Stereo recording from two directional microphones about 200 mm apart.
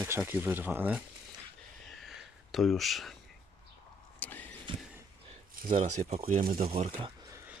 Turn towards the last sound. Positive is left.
turn(degrees=-30)  # may be behind; listen again after turning